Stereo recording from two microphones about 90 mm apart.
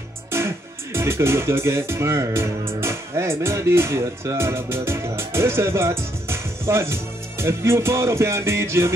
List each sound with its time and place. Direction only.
0.9 s speech: 30° right (ahead or behind)